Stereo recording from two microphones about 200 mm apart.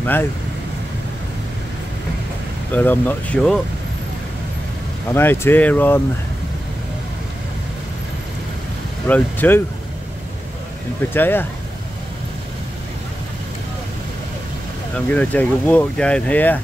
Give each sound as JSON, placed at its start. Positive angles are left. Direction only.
{"t": 0.0, "sound": "speech", "side_deg": 10}
{"t": 2.7, "sound": "speech", "side_deg": 10}
{"t": 5.1, "sound": "speech", "side_deg": 10}
{"t": 9.0, "sound": "speech", "side_deg": 10}
{"t": 11.1, "sound": "speech", "side_deg": 10}
{"t": 15.0, "sound": "speech", "side_deg": 10}